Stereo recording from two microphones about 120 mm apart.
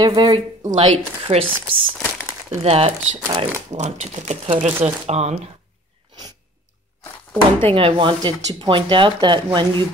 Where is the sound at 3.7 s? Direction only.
70° right (ahead or behind).